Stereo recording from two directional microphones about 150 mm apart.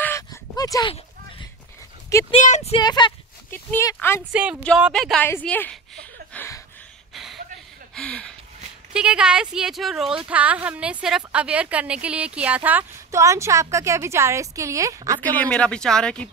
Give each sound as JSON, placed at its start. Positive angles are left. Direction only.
{"t": 0.0, "sound": "a sound", "side_deg": 20}
{"t": 2.3, "sound": "speech", "side_deg": 50}
{"t": 2.8, "sound": "speech", "side_deg": 25}
{"t": 3.4, "sound": "speech", "side_deg": 15}
{"t": 4.3, "sound": "speech", "side_deg": -10}
{"t": 4.9, "sound": "a woman's voice", "side_deg": 5}
{"t": 6.3, "sound": "a sound", "side_deg": 15}
{"t": 7.9, "sound": "a sound", "side_deg": 5}
{"t": 8.9, "sound": "a woman's voice", "side_deg": -5}
{"t": 15.2, "sound": "speech", "side_deg": 10}